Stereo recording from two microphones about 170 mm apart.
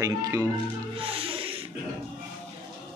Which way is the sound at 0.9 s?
30° right (ahead or behind).